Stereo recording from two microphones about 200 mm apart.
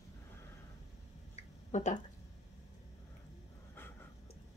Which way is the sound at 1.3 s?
35° left (ahead or behind).